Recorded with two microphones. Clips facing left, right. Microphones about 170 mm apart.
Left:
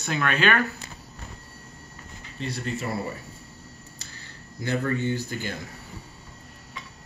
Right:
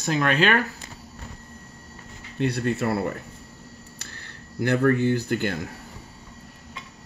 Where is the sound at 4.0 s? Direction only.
65° right (ahead or behind).